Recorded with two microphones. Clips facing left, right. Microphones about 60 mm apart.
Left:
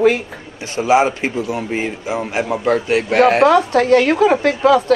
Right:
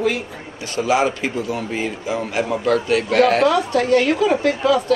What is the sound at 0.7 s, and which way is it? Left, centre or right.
A man's voice, left.